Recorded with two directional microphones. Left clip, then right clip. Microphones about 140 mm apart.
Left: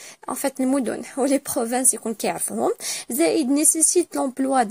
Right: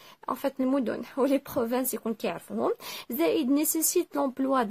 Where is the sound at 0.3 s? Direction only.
25° left (ahead or behind).